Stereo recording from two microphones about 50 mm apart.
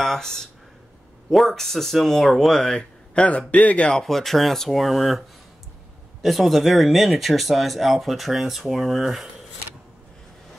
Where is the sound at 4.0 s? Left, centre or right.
Centre.